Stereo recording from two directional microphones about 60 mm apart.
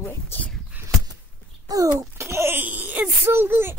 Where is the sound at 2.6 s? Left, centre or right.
Right.